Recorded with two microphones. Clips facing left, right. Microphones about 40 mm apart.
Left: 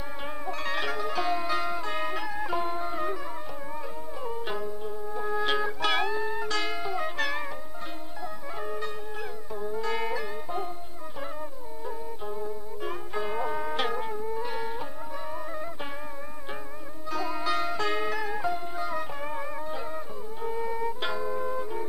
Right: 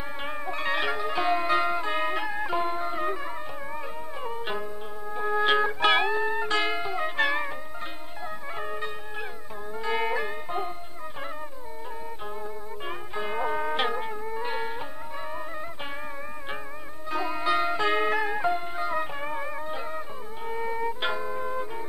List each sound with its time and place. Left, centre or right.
0.2 s music: right
4.2 s music: right
8.5 s music: right
12.4 s music: right
17.1 s music: right